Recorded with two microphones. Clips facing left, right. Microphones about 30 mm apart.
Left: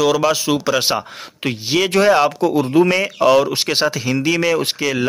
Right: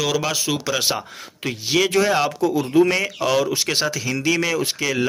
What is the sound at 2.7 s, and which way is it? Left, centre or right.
Speech, left.